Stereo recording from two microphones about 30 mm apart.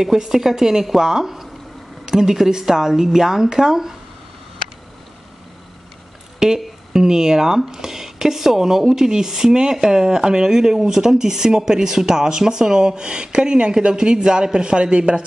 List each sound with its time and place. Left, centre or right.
0.2 s speech: centre
6.4 s speech: centre; by 15.2 s right